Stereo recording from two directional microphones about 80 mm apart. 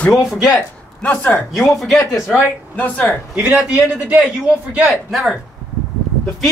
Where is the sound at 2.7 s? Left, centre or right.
Left.